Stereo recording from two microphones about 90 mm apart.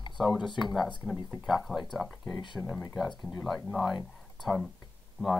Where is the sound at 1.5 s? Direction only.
Centre (ahead or behind).